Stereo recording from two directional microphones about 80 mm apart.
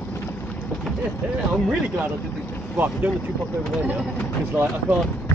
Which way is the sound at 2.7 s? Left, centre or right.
Right.